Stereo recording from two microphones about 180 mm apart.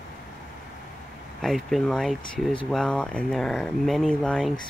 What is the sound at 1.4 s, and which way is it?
Speech, centre (ahead or behind).